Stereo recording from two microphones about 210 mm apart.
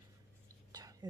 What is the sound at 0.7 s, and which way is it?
Whispering, 20° right (ahead or behind).